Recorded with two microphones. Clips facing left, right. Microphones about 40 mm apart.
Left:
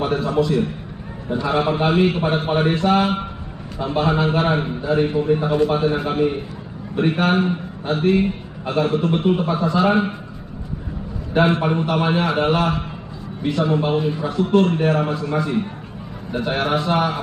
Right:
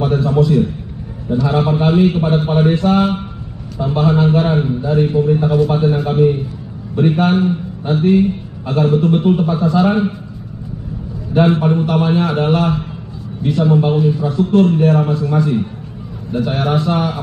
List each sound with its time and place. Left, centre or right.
0.0 s a sound: centre
0.3 s a sound: centre
1.3 s a man's voice: centre
11.3 s a man's voice: centre
12.3 s a man's voice: centre
13.7 s a man's voice: centre
16.8 s a man's voice: centre